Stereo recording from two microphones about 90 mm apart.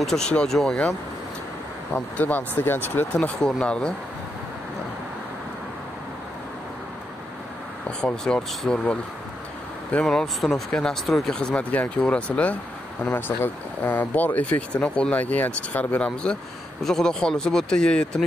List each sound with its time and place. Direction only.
0.0 s speech: 5° left (ahead or behind)
2.0 s speech: 15° left (ahead or behind)
3.2 s speech: 5° left (ahead or behind)
8.0 s speech: 10° left (ahead or behind)
9.9 s speech: 5° left (ahead or behind)